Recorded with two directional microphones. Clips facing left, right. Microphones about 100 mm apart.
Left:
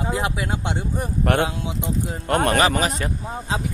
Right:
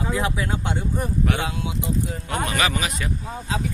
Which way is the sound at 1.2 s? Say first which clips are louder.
Left 8 dB; 55° left (ahead or behind).